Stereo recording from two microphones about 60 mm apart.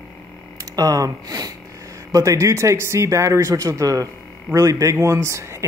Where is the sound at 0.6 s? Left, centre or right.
Right.